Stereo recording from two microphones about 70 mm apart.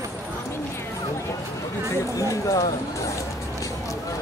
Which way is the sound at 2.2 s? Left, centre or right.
Left.